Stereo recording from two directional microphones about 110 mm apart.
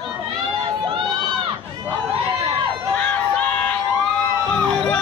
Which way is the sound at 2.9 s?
15° left (ahead or behind).